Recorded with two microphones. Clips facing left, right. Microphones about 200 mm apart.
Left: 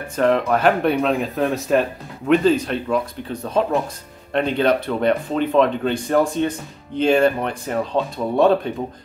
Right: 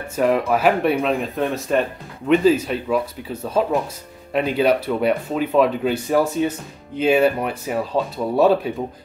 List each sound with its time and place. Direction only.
0.1 s speech: 5° right (ahead or behind)